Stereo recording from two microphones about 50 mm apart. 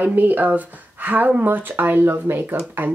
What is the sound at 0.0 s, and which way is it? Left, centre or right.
Speech, right.